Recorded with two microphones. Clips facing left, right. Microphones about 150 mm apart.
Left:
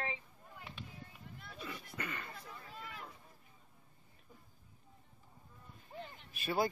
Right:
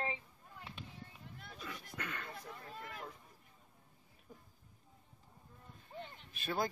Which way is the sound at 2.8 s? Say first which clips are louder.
Even; 45° right (ahead or behind).